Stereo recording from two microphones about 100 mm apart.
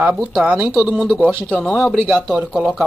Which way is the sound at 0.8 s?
5° right (ahead or behind).